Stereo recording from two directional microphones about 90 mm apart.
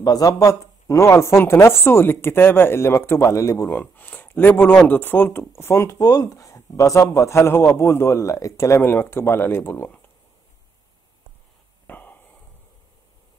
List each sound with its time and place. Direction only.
0.0 s speech: 45° left (ahead or behind)
3.8 s speech: 20° left (ahead or behind)
11.9 s a sound: 20° left (ahead or behind)